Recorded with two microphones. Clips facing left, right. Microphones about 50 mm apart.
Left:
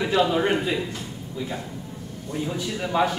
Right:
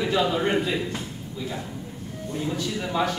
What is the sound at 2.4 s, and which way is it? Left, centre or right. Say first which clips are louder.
Speech: even; centre.